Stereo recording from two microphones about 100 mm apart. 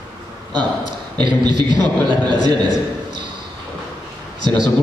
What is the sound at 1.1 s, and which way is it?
A man's voice, 45° right (ahead or behind).